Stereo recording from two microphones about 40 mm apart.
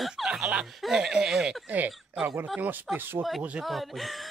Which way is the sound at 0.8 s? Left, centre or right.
Centre.